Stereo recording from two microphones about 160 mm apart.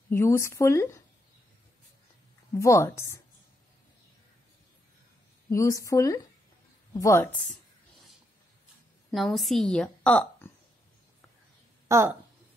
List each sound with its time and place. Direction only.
0.1 s a woman's voice: 15° left (ahead or behind)
2.6 s a woman's voice: 20° left (ahead or behind)
5.5 s a woman's voice: 20° left (ahead or behind)
9.1 s a woman's voice: centre (ahead or behind)
11.9 s a woman's voice: 20° right (ahead or behind)